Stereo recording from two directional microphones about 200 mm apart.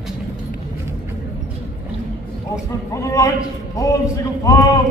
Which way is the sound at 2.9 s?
15° left (ahead or behind).